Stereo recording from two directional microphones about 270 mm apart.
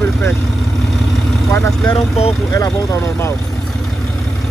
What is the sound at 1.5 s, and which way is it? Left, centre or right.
Speech, centre.